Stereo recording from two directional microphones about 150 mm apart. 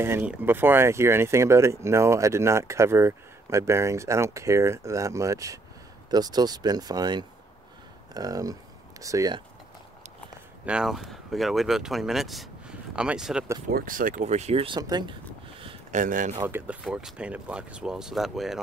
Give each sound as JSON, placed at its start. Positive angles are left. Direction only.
{"t": 0.0, "sound": "speech", "side_deg": -15}
{"t": 10.6, "sound": "speech", "side_deg": -5}
{"t": 13.7, "sound": "speech", "side_deg": -75}
{"t": 14.8, "sound": "speech", "side_deg": -30}
{"t": 15.9, "sound": "speech", "side_deg": -60}
{"t": 16.3, "sound": "speech", "side_deg": -15}